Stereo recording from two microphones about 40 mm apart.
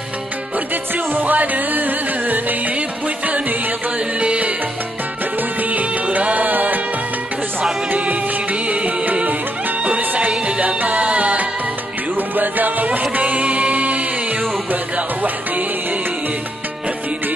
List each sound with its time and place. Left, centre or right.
1.1 s music: right
4.2 s music: right
6.1 s music: right
8.6 s music: right
12.4 s music: right